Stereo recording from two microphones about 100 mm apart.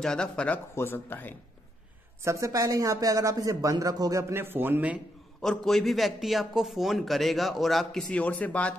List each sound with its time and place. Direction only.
0.0 s speech: 5° left (ahead or behind)
0.7 s speech: 20° left (ahead or behind)
2.2 s speech: 30° right (ahead or behind)
5.4 s a man's voice: 5° left (ahead or behind)
8.2 s speech: 15° left (ahead or behind)